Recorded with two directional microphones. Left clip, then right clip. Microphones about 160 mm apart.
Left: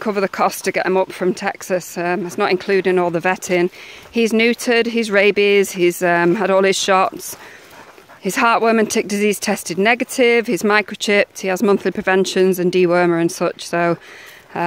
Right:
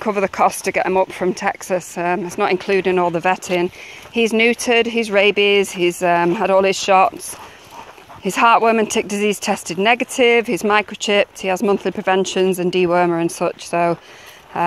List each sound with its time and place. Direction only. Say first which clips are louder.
0.0 s speech: right 1 dB; 30° left (ahead or behind)
3.1 s speech: even; 50° left (ahead or behind)
8.2 s speech: right 2 dB; 45° left (ahead or behind)